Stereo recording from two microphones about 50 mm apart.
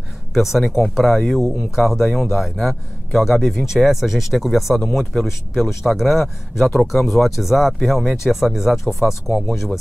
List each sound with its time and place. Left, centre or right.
0.3 s speech: centre